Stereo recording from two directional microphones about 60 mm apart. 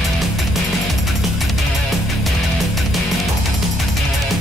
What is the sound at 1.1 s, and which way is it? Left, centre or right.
Music, centre.